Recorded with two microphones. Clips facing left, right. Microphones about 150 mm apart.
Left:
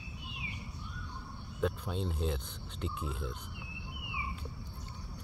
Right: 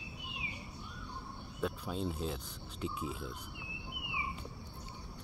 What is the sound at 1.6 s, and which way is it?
Speech, centre (ahead or behind).